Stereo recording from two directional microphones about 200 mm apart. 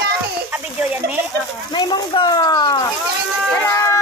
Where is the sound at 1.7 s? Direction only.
20° left (ahead or behind).